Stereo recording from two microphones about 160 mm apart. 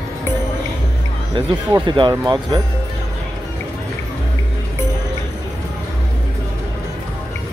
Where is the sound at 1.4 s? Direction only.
30° right (ahead or behind).